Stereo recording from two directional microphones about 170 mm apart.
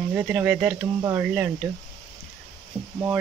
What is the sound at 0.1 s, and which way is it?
Speech, 10° right (ahead or behind).